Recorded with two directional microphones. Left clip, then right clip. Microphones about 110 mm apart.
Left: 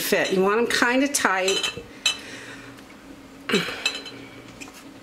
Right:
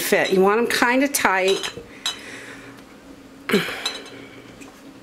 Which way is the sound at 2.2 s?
25° right (ahead or behind).